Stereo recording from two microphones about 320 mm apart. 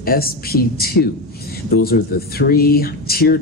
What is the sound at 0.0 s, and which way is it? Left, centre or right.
Speech, left.